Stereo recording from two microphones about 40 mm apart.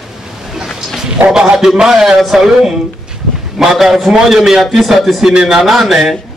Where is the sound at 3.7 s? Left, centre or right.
Centre.